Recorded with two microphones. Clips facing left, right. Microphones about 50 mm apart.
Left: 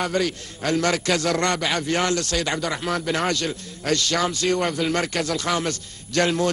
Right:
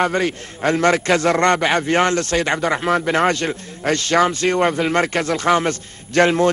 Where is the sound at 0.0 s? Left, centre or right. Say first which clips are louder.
Right 5 dB; right.